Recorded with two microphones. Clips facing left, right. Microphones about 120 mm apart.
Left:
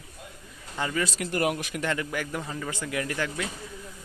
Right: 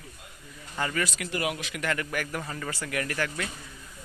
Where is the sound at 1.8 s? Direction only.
20° left (ahead or behind).